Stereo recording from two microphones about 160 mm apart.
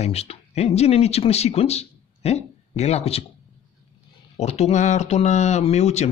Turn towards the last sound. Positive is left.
turn(degrees=45)  # may be behind; listen again after turning